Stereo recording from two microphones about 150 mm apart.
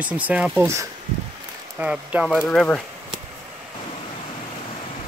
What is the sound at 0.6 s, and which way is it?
Speech, 20° right (ahead or behind).